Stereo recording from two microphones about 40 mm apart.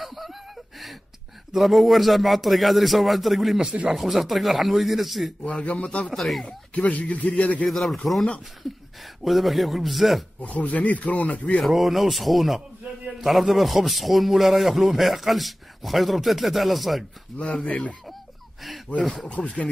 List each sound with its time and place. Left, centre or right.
0.0 s gasp: centre
1.5 s speech: centre
5.4 s speech: left
6.1 s speech: centre
6.4 s speech: left
7.6 s speech: centre
10.4 s speech: left
11.6 s speech: centre
17.6 s speech: left
19.2 s speech: left